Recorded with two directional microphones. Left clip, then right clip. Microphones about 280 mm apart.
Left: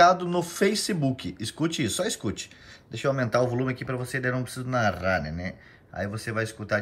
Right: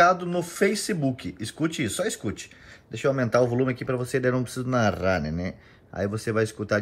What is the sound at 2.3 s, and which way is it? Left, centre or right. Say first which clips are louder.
Speech: left 2 dB; left.